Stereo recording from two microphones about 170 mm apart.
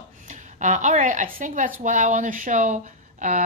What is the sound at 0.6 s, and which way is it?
A woman's voice, 45° right (ahead or behind).